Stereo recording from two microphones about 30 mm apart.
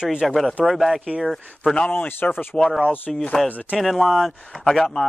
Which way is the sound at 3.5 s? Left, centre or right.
Left.